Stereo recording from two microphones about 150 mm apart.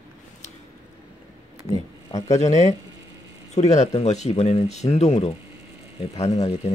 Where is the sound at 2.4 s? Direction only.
50° left (ahead or behind).